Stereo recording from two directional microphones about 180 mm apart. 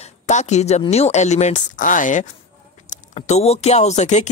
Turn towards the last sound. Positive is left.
turn(degrees=40)  # may be behind; listen again after turning